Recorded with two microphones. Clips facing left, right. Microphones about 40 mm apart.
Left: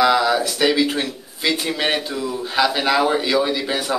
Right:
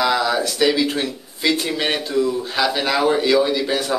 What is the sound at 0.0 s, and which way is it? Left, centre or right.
Speech, centre.